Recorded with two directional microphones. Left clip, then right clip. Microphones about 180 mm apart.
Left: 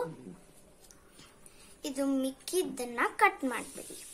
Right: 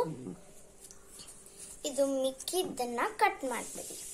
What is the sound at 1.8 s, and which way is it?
Speech, 40° left (ahead or behind).